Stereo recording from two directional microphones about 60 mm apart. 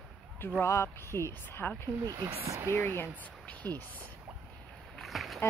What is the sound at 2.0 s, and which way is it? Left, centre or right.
Speech, right.